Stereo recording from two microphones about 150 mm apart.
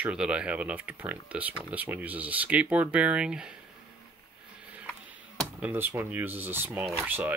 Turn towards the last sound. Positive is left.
turn(degrees=-10)  # may be behind; listen again after turning